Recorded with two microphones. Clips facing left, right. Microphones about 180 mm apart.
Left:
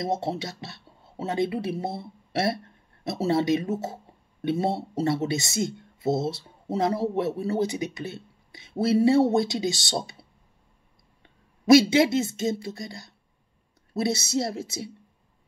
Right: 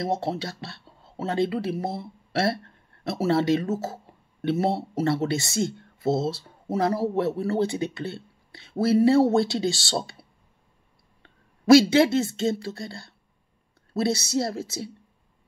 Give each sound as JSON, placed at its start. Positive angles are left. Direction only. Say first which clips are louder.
{"t": 0.0, "sound": "speech", "louder": "right 1 dB", "side_deg": 20}
{"t": 11.2, "sound": "speech", "louder": "right 1 dB", "side_deg": 20}